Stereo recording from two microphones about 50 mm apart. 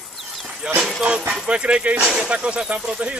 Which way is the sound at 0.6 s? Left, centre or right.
Right.